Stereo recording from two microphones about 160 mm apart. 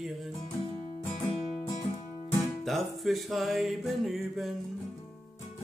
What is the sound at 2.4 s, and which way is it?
Music, centre (ahead or behind).